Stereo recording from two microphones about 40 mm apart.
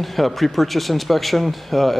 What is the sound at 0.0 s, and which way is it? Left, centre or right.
Speech, centre.